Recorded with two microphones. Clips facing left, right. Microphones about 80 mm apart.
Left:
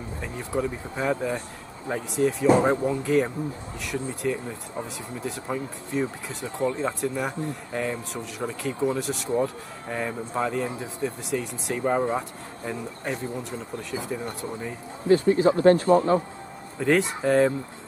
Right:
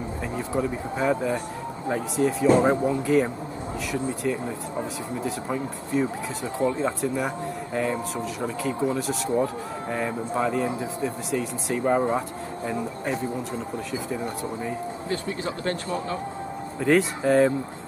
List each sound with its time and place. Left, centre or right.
0.4 s speech: centre
15.3 s speech: left
16.8 s speech: centre